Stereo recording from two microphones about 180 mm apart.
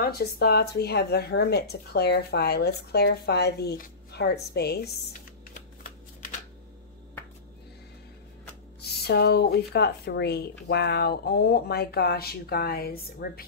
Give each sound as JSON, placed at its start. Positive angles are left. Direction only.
{"t": 0.0, "sound": "speech", "side_deg": 60}
{"t": 8.8, "sound": "speech", "side_deg": 65}